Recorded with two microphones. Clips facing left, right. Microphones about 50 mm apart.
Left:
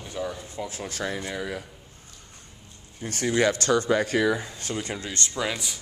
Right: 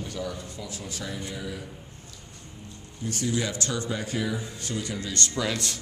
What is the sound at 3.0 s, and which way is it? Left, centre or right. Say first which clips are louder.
Speech: left 6 dB; left.